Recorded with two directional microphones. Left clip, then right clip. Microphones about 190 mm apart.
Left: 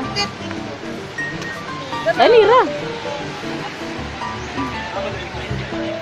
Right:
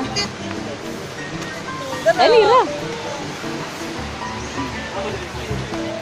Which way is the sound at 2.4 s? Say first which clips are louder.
Left 1 dB; 20° left (ahead or behind).